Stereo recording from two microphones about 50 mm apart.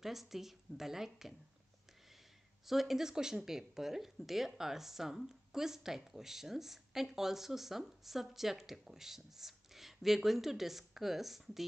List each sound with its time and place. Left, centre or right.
0.0 s speech: centre
2.6 s speech: centre